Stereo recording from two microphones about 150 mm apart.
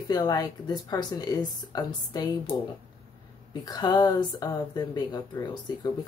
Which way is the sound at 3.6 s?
30° left (ahead or behind).